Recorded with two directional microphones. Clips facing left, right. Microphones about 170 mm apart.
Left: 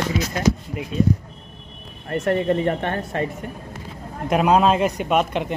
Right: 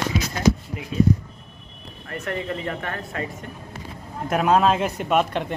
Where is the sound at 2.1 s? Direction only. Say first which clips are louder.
Left 8 dB; 30° left (ahead or behind).